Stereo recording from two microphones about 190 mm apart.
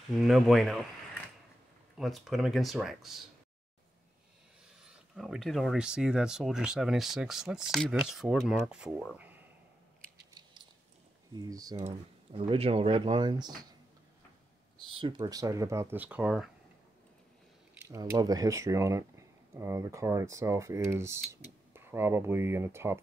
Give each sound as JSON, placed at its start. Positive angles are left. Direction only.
{"t": 0.2, "sound": "speech", "side_deg": 0}
{"t": 2.0, "sound": "speech", "side_deg": 0}
{"t": 4.9, "sound": "speech", "side_deg": 0}
{"t": 11.3, "sound": "speech", "side_deg": -20}
{"t": 14.8, "sound": "speech", "side_deg": -25}
{"t": 17.8, "sound": "speech", "side_deg": -15}